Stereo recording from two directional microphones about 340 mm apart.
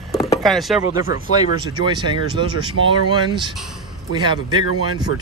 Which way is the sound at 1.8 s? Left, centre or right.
Centre.